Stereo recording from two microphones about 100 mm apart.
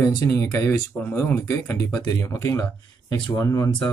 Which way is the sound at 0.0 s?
35° left (ahead or behind).